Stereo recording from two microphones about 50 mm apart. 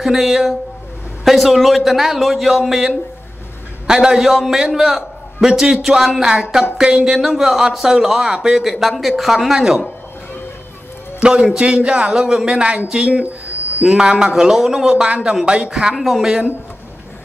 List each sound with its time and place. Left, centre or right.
0.0 s a man's voice: centre
4.7 s a sound: centre
5.5 s speech: centre
11.1 s speech: centre
14.9 s a man's voice: right
16.0 s speech: centre